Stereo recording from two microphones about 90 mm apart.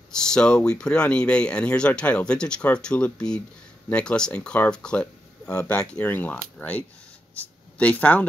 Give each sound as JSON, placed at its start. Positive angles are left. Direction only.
{"t": 0.1, "sound": "speech", "side_deg": 5}